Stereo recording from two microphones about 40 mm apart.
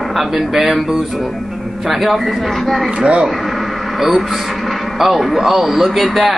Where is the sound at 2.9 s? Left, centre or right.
Right.